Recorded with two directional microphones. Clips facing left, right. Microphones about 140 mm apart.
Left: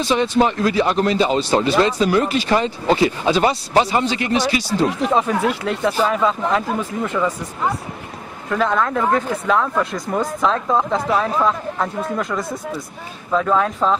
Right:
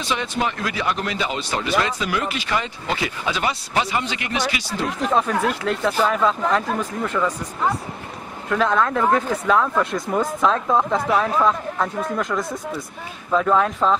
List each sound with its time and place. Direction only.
0.0 s speech: 35° left (ahead or behind)
4.8 s speech: 5° left (ahead or behind)